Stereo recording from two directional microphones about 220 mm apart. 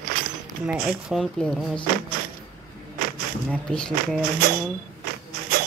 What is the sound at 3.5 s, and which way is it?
Speech, 5° left (ahead or behind).